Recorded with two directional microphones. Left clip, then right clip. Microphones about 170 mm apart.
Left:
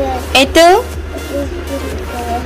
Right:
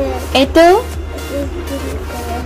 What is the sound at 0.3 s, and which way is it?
Speech, 20° right (ahead or behind).